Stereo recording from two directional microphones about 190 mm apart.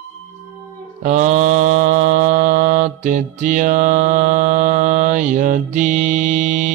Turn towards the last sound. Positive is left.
turn(degrees=-40)  # may be behind; listen again after turning